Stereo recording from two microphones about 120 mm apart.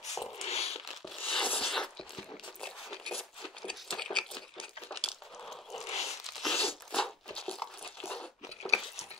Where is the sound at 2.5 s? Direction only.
5° left (ahead or behind).